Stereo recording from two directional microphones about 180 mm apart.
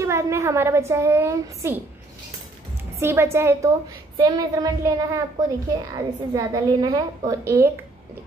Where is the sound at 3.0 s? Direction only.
15° right (ahead or behind).